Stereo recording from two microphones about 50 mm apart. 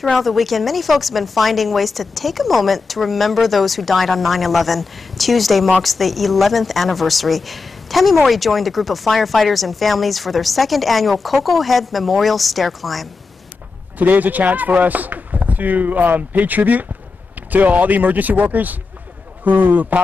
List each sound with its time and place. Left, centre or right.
0.0 s a woman's voice: centre
13.9 s speech: right